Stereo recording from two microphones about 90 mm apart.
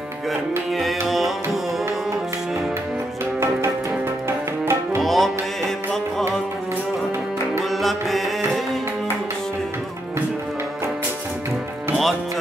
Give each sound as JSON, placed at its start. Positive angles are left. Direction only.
{"t": 0.7, "sound": "music", "side_deg": 0}
{"t": 4.3, "sound": "music", "side_deg": -30}
{"t": 5.0, "sound": "music", "side_deg": 0}
{"t": 11.9, "sound": "music", "side_deg": 0}